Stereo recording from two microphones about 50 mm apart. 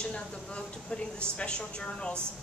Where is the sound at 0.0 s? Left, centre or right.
Centre.